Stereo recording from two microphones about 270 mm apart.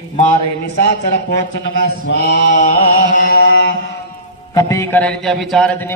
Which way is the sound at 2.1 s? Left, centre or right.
Left.